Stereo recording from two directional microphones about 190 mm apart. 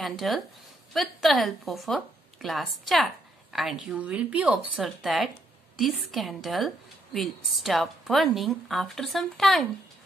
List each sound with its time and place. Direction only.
0.2 s speech: centre (ahead or behind)